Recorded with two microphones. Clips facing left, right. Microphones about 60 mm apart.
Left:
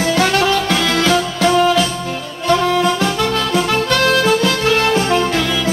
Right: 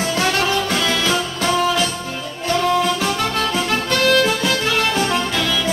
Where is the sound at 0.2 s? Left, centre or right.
Left.